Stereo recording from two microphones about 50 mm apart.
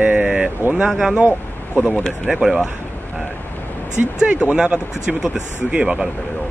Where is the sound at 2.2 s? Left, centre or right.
Centre.